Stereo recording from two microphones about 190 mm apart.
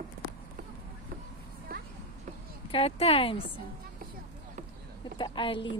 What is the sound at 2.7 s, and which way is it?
Speech, 30° left (ahead or behind).